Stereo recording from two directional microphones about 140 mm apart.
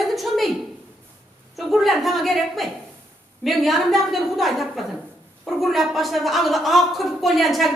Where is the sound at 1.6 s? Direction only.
Centre (ahead or behind).